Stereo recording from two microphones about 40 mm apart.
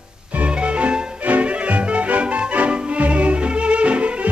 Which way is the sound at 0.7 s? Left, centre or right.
Right.